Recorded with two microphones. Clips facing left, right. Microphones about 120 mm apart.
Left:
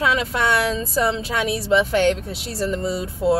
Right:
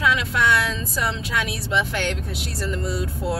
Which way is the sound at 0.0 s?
30° left (ahead or behind).